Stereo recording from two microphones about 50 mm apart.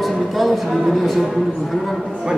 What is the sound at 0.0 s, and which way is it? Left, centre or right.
Music, centre.